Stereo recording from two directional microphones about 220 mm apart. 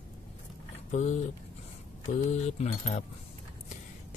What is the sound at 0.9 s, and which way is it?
Speech, 30° left (ahead or behind).